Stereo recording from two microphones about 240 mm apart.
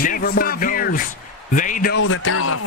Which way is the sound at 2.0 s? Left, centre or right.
Left.